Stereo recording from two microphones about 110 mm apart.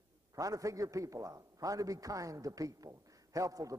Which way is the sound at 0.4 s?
30° right (ahead or behind).